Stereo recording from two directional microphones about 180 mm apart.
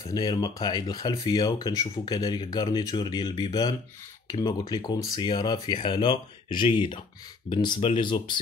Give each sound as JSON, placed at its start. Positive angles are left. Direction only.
{"t": 0.0, "sound": "speech", "side_deg": 20}